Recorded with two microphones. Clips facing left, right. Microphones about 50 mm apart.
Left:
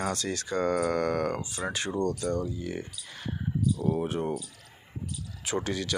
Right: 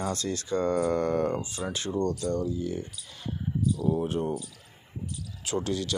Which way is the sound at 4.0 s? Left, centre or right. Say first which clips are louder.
Right 1 dB; centre.